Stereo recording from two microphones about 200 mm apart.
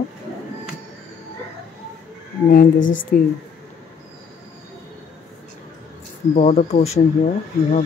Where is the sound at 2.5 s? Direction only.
45° left (ahead or behind).